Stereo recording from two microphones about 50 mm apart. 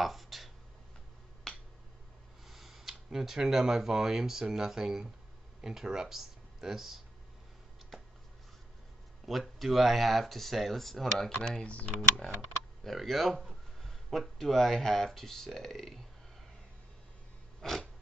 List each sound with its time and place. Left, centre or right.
0.0 s a sound: centre
1.5 s finger snapping: centre
2.4 s speech: centre
9.2 s speech: centre
11.6 s speech: left
12.8 s speech: centre
17.6 s a sound: centre